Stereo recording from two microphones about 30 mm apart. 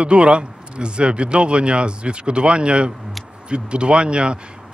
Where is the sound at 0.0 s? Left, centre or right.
Right.